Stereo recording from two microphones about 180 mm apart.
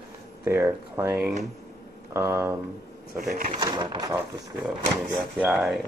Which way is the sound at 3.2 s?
50° right (ahead or behind).